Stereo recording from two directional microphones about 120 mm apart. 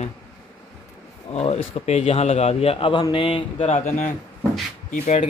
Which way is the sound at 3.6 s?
85° left.